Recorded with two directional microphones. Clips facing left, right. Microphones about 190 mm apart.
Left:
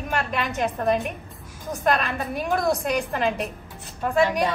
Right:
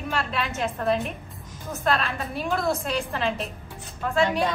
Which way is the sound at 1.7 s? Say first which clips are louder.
Left 2 dB; 15° left (ahead or behind).